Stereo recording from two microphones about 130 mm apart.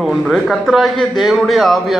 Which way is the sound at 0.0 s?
Centre (ahead or behind).